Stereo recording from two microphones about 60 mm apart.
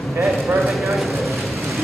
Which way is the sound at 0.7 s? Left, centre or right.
Centre.